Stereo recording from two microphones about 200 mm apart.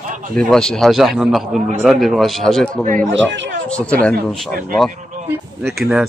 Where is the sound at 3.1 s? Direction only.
65° right (ahead or behind).